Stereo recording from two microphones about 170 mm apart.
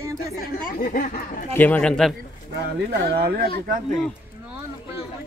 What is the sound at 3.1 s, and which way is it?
Speech, 65° right (ahead or behind).